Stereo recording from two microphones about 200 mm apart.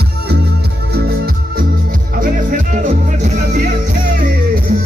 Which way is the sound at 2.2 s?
45° right (ahead or behind).